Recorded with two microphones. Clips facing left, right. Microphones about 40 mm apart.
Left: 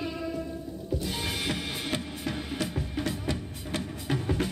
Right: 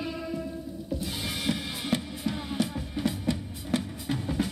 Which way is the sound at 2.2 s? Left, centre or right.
Left.